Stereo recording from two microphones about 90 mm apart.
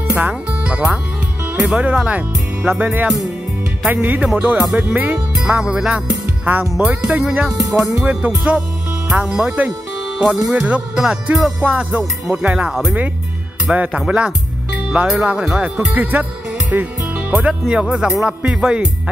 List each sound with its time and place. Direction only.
0.1 s speech: 20° right (ahead or behind)
5.3 s music: 10° right (ahead or behind)
6.8 s speech: 15° right (ahead or behind)